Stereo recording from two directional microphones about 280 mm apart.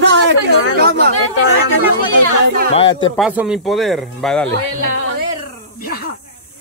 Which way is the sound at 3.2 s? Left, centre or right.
Centre.